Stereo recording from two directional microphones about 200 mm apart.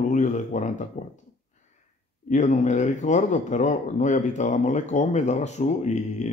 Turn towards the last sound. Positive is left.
turn(degrees=35)  # may be behind; listen again after turning